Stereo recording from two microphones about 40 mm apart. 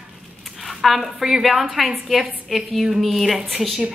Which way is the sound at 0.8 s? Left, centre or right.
Centre.